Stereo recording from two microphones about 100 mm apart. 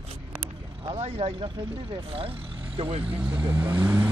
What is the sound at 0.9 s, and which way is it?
Speech, 85° right.